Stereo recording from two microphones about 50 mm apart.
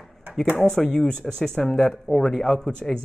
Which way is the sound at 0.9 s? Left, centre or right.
Centre.